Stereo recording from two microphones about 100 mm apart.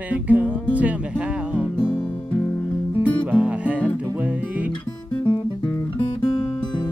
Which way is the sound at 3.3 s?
15° right (ahead or behind).